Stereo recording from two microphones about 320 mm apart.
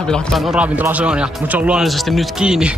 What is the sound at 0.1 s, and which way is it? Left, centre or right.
Speech, centre.